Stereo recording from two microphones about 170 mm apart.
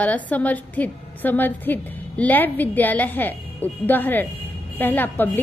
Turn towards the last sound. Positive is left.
turn(degrees=10)  # may be behind; listen again after turning